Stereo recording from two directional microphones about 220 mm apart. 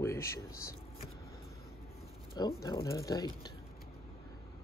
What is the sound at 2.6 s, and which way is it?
Speech, 15° left (ahead or behind).